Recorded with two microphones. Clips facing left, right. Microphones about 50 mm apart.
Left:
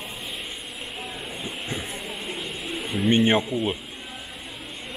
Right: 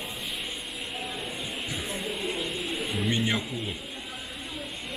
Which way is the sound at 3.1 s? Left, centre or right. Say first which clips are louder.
Left 11 dB; left.